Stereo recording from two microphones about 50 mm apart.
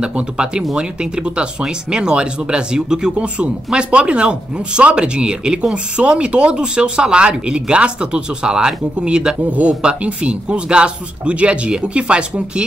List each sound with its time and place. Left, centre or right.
0.0 s speech: centre
9.4 s speech: right